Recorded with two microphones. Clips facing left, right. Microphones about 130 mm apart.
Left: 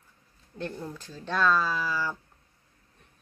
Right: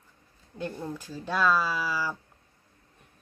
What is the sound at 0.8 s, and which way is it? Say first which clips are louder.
Speech: right 3 dB; 10° right (ahead or behind).